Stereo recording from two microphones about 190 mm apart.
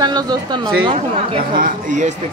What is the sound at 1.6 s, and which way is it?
Speech, 40° right (ahead or behind).